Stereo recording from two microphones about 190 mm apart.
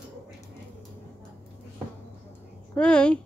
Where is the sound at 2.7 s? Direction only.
5° left (ahead or behind).